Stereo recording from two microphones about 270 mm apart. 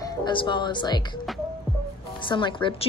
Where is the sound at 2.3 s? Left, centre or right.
Centre.